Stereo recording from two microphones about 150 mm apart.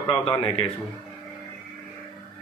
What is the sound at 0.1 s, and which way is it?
Speech, 10° left (ahead or behind).